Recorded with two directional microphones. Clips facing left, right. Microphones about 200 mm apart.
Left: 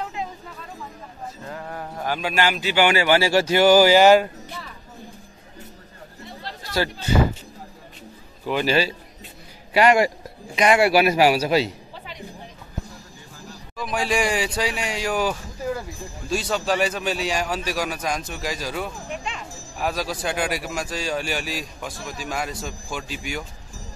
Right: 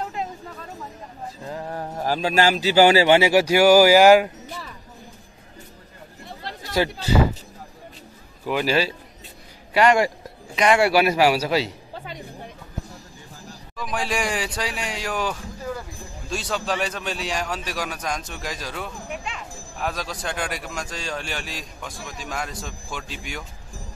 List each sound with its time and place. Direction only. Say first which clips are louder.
1.5 s speech: right 4 dB; 25° right (ahead or behind)
3.2 s speech: right 2 dB; 15° right (ahead or behind)
6.8 s speech: right 2 dB; 15° right (ahead or behind)
8.5 s a man's voice: left 1 dB; 5° right (ahead or behind)
9.8 s a man's voice: left 1 dB; 10° left (ahead or behind)
13.7 s a man's voice: left 3 dB; centre (ahead or behind)
19.0 s speech: left 1 dB; 5° right (ahead or behind)
19.8 s a man's voice: left 3 dB; 5° left (ahead or behind)